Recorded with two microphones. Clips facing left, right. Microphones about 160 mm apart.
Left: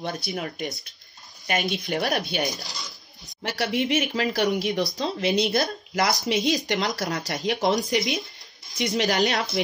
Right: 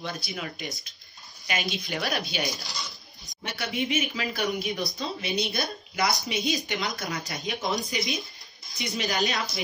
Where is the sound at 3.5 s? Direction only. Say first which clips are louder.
Left 5 dB; 80° left.